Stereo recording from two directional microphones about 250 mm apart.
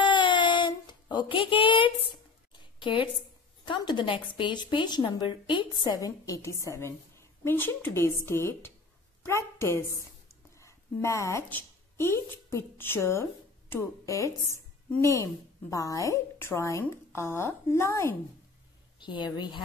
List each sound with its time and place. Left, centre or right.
0.0 s child singing: centre
2.8 s a woman's voice: centre